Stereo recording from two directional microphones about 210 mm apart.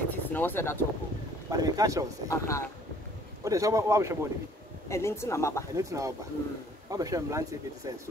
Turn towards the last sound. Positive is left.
turn(degrees=-15)  # may be behind; listen again after turning